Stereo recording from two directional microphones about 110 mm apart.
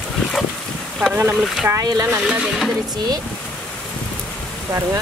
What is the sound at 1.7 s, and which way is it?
Speech, 30° right (ahead or behind).